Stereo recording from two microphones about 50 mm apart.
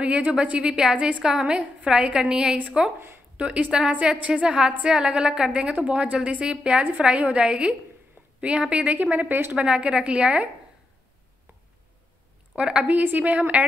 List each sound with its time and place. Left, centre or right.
0.0 s a woman's voice: right
0.9 s a woman's voice: right
1.2 s a woman's voice: centre
8.9 s speech: right
9.7 s a woman's voice: centre
12.5 s a woman's voice: centre
12.8 s a woman's voice: right